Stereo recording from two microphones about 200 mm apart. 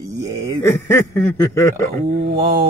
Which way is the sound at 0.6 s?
15° left (ahead or behind).